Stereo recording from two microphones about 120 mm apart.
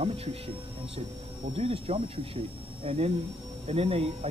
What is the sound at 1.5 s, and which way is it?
Speech, 55° right (ahead or behind).